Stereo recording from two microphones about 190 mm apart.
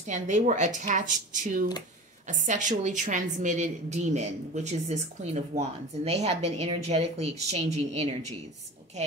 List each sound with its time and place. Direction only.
0.0 s a woman's voice: 40° right (ahead or behind)